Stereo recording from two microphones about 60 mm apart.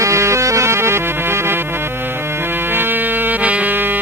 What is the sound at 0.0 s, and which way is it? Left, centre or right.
Music, right.